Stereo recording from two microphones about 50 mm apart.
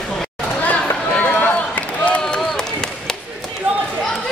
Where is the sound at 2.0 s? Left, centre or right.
Left.